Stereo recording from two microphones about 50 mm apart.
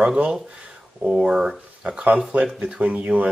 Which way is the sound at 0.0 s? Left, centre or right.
Centre.